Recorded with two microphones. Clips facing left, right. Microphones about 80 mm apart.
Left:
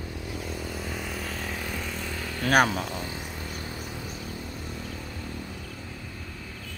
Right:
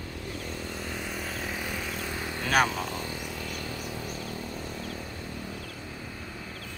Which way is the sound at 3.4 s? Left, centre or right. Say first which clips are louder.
Right 1 dB; left.